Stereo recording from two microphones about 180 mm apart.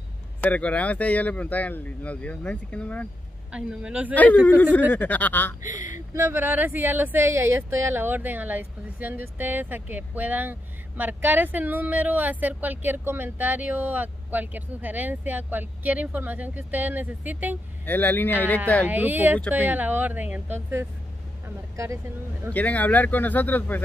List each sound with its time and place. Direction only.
0.4 s speech: 10° left (ahead or behind)
3.5 s speech: 5° right (ahead or behind)
4.1 s speech: 10° left (ahead or behind)
5.6 s speech: 45° left (ahead or behind)
5.9 s speech: 15° right (ahead or behind)
17.8 s speech: 10° left (ahead or behind)
18.9 s speech: 10° right (ahead or behind)
22.5 s speech: 10° left (ahead or behind)